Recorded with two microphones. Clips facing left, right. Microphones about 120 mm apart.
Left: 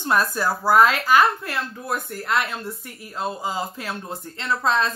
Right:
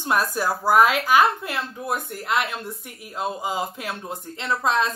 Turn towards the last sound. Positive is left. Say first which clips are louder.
# even
turn(degrees=-15)  # may be behind; listen again after turning